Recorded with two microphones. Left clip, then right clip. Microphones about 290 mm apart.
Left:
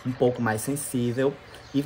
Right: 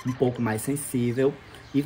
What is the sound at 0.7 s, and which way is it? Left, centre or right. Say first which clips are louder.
Fowl: right 1 dB; centre.